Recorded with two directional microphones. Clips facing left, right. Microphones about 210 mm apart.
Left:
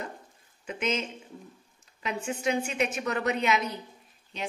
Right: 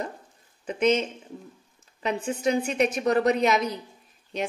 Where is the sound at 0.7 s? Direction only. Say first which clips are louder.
Right 8 dB; 40° right (ahead or behind).